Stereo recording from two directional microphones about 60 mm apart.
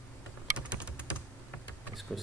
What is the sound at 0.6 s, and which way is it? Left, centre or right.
Typing, centre.